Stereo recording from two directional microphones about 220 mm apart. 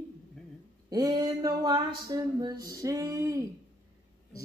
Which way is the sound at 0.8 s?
15° right (ahead or behind).